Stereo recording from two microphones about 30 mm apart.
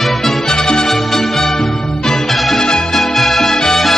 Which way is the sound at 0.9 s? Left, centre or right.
Centre.